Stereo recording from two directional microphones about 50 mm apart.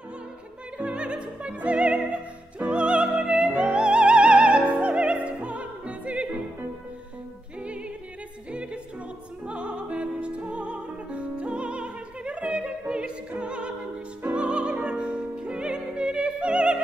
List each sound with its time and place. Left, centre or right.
0.7 s music: right
7.6 s music: right
9.5 s music: right